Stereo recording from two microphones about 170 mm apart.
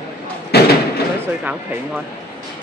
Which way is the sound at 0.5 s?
70° left (ahead or behind).